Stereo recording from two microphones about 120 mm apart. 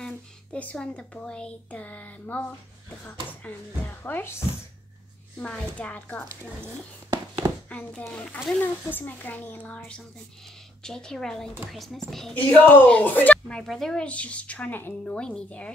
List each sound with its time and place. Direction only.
0.0 s speech: 10° left (ahead or behind)
5.4 s speech: 10° left (ahead or behind)
7.4 s a sound: 40° right (ahead or behind)
8.1 s speech: 10° left (ahead or behind)
12.4 s speech: 15° left (ahead or behind)